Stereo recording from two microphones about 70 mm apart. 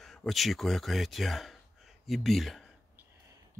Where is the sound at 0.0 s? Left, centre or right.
Centre.